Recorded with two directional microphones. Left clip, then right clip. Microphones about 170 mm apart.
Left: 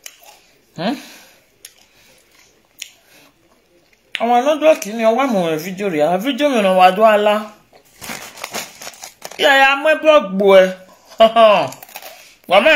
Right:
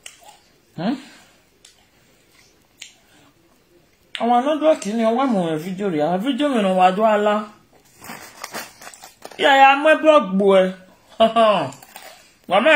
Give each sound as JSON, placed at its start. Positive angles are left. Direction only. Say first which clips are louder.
{"t": 4.1, "sound": "speech", "louder": "left 4 dB", "side_deg": 5}
{"t": 8.4, "sound": "a sound", "louder": "left 5 dB", "side_deg": 20}
{"t": 9.4, "sound": "a man's voice", "louder": "left 1 dB", "side_deg": 0}